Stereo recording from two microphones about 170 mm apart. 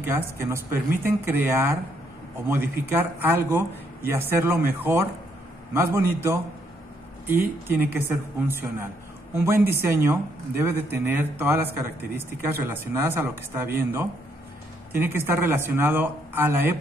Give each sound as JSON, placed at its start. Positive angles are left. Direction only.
{"t": 0.1, "sound": "speech", "side_deg": -15}